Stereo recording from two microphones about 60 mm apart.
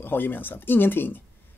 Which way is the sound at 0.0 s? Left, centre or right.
Left.